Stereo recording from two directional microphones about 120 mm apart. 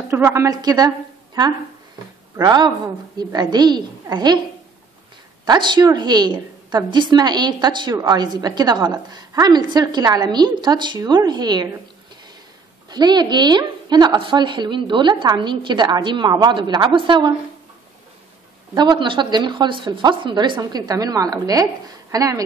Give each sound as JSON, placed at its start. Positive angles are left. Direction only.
{"t": 0.1, "sound": "a woman's voice", "side_deg": -25}
{"t": 5.4, "sound": "a woman's voice", "side_deg": -40}
{"t": 12.9, "sound": "a woman's voice", "side_deg": -35}
{"t": 18.8, "sound": "a woman's voice", "side_deg": -40}